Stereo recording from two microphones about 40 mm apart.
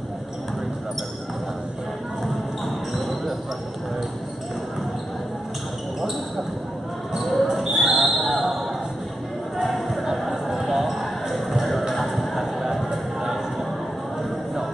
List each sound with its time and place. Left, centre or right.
2.2 s basketball bounce: centre
7.2 s basketball bounce: centre
9.6 s a sound: centre